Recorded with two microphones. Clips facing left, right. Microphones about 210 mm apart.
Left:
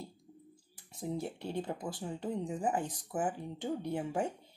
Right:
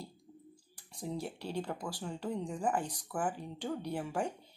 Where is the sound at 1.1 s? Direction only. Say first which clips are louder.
Left 1 dB; 20° left (ahead or behind).